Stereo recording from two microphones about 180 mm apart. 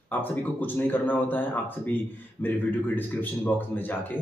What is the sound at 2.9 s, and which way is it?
Speech, 10° left (ahead or behind).